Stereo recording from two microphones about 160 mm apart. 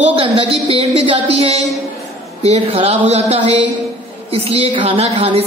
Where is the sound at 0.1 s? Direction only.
35° right (ahead or behind).